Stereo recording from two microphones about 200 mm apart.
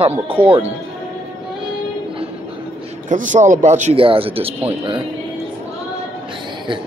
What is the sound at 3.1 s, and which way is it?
Speech, 40° right (ahead or behind).